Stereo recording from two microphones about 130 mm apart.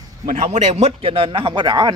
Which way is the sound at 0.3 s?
60° right (ahead or behind).